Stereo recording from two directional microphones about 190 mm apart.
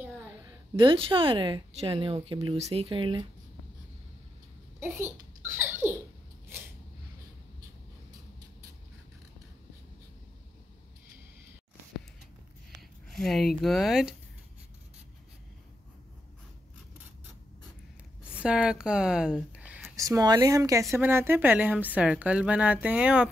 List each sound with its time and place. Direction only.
0.7 s speech: 25° right (ahead or behind)
4.7 s a sound: 10° right (ahead or behind)
13.1 s speech: centre (ahead or behind)
18.4 s a woman's voice: 5° right (ahead or behind)
20.0 s a woman's voice: 20° right (ahead or behind)